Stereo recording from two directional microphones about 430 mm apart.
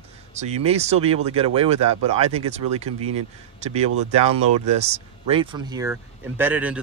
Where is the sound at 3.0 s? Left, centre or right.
Right.